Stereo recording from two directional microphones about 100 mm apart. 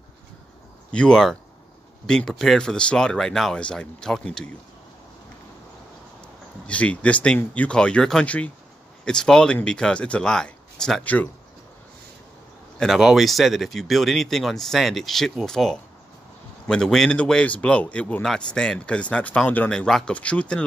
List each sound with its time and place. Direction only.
0.9 s speech: 10° left (ahead or behind)
6.7 s speech: 15° left (ahead or behind)
12.7 s speech: centre (ahead or behind); by 19.7 s 15° left (ahead or behind)
19.7 s speech: 5° left (ahead or behind)